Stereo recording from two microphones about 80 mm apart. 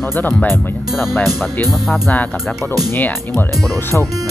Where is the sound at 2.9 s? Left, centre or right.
Left.